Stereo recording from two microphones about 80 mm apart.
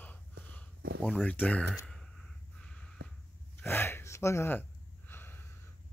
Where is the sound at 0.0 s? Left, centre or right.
Left.